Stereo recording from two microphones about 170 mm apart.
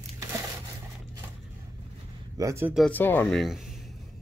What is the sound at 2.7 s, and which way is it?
Speech, 5° left (ahead or behind).